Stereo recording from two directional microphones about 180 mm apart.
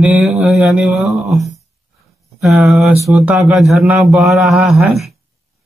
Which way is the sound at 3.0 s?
5° right (ahead or behind).